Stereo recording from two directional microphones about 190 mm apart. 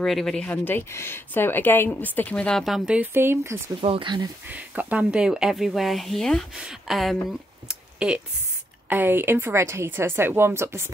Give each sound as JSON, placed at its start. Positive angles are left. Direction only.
{"t": 0.0, "sound": "speech", "side_deg": 0}
{"t": 3.8, "sound": "speech", "side_deg": -25}
{"t": 4.5, "sound": "speech", "side_deg": -10}